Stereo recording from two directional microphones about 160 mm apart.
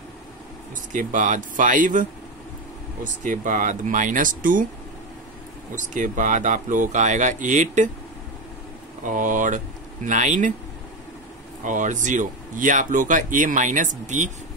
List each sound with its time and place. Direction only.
0.9 s speech: 50° right (ahead or behind)
5.9 s speech: 50° right (ahead or behind)
9.0 s speech: 55° right (ahead or behind)
11.6 s speech: 50° right (ahead or behind)